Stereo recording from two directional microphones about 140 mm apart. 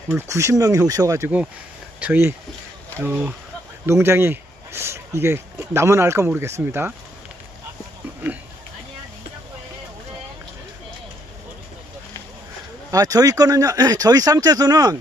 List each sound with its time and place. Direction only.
0.3 s speech: 20° right (ahead or behind)
2.0 s speech: 15° right (ahead or behind)
12.9 s speech: 25° right (ahead or behind)